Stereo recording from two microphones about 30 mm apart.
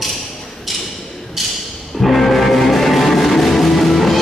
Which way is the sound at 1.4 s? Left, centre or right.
Centre.